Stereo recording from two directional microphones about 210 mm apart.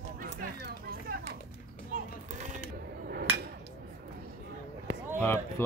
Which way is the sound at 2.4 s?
40° right (ahead or behind).